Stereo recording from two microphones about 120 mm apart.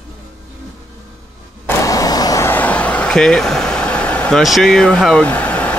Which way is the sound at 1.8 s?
30° left (ahead or behind).